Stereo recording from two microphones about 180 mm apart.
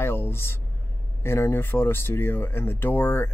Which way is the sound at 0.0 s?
15° left (ahead or behind).